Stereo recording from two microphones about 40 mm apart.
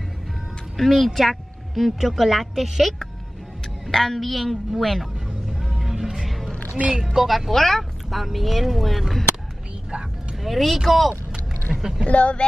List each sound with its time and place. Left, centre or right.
0.7 s speech: centre
5.5 s vehicle: centre
6.1 s speech: centre
10.4 s speech: centre
12.1 s speech: left